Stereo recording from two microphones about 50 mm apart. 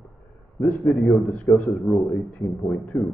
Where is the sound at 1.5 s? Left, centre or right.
Left.